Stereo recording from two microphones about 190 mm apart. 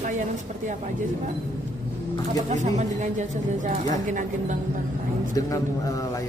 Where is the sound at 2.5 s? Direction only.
35° right (ahead or behind).